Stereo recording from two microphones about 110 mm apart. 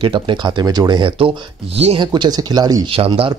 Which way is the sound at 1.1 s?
60° right (ahead or behind).